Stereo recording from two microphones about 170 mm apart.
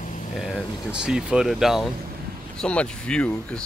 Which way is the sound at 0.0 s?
50° left (ahead or behind).